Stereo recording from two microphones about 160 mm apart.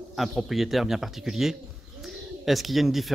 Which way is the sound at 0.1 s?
Centre (ahead or behind).